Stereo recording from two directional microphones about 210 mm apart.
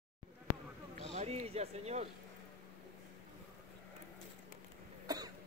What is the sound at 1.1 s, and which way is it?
Speech, 30° right (ahead or behind).